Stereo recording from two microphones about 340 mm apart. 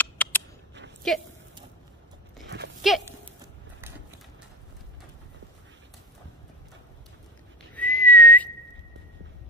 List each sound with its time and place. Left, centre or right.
0.0 s mouse: centre
1.0 s speech: centre
2.4 s a sound: right
2.8 s clip-clop: centre
7.7 s whistling: centre